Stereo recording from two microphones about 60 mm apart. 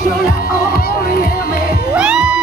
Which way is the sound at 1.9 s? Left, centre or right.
Centre.